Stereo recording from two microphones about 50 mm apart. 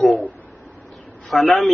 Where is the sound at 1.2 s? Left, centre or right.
Centre.